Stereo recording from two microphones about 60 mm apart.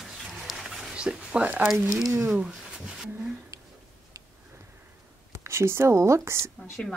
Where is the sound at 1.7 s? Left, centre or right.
Centre.